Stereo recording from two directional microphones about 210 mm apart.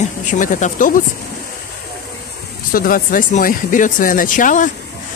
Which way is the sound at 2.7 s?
40° left (ahead or behind).